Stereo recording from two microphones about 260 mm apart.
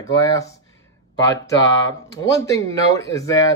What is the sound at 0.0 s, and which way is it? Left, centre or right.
Speech, centre.